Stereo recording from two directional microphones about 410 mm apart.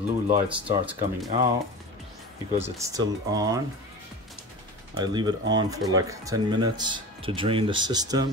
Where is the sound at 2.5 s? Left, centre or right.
Centre.